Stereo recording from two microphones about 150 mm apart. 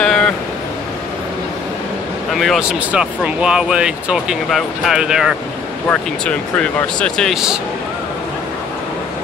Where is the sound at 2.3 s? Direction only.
Centre (ahead or behind).